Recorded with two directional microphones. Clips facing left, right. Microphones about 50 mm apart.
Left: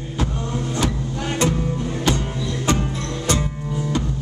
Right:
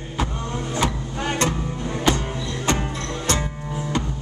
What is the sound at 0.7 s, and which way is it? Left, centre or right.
Vehicle, centre.